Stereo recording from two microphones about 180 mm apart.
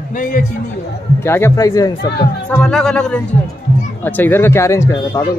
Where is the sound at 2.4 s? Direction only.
5° left (ahead or behind).